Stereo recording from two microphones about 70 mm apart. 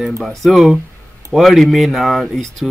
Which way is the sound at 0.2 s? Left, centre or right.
Centre.